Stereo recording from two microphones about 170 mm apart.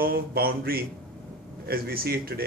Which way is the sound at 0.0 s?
60° right (ahead or behind).